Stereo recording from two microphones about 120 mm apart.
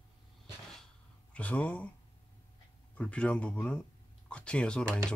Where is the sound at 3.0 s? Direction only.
10° left (ahead or behind).